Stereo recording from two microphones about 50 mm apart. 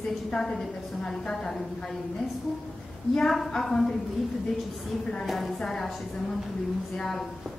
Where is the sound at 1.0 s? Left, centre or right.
Centre.